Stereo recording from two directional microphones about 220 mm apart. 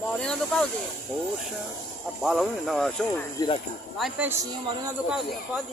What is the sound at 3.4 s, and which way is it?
Speech, 15° left (ahead or behind).